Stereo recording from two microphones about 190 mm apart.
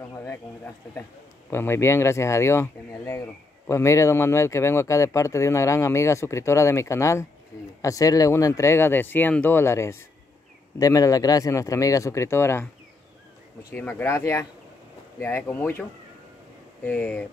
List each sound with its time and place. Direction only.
0.1 s speech: 15° left (ahead or behind)
1.5 s speech: 15° left (ahead or behind)
13.7 s speech: 10° left (ahead or behind)